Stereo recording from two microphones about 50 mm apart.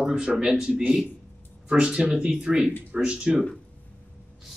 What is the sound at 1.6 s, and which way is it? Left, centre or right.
Speech, centre.